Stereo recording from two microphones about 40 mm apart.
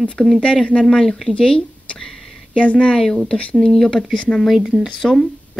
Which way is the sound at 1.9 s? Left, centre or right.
Centre.